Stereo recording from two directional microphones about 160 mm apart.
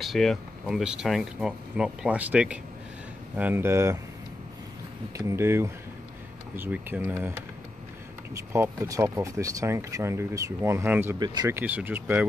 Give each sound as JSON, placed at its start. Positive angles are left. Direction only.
{"t": 0.0, "sound": "speech", "side_deg": 0}
{"t": 5.1, "sound": "speech", "side_deg": -15}
{"t": 8.5, "sound": "speech", "side_deg": -20}
{"t": 11.1, "sound": "speech", "side_deg": -25}
{"t": 11.5, "sound": "speech", "side_deg": -10}